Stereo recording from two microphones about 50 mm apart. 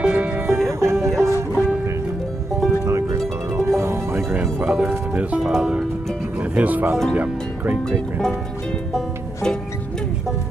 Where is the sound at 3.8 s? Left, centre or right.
Right.